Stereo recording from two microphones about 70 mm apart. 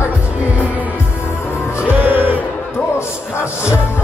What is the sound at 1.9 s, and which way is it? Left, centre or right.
Music, right.